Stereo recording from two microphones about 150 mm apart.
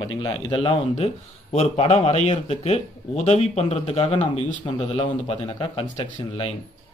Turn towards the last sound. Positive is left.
turn(degrees=35)  # may be behind; listen again after turning